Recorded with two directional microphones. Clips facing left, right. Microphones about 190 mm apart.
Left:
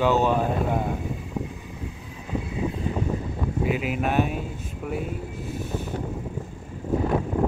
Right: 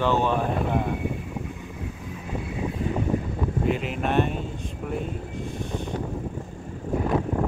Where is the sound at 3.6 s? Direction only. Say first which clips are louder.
Left 1 dB; 5° left (ahead or behind).